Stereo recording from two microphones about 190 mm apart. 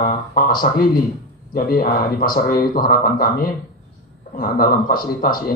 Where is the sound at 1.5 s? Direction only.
50° left (ahead or behind).